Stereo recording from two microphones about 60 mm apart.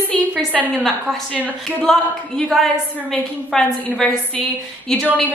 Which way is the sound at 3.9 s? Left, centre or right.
Centre.